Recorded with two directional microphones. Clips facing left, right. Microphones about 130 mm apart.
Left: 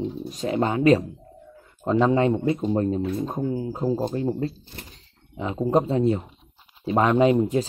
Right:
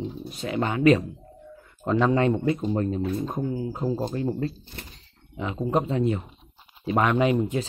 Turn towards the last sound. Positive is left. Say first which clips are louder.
# left 4 dB
turn(degrees=35)  # may be behind; listen again after turning